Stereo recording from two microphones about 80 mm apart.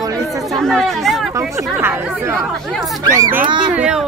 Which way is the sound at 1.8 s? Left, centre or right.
Right.